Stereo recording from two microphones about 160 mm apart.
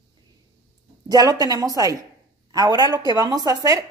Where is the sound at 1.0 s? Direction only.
25° right (ahead or behind).